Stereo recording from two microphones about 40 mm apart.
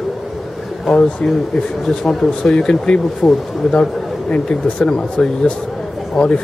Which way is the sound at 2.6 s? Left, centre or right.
Left.